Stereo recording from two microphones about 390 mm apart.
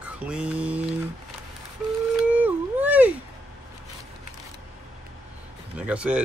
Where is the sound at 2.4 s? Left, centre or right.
Centre.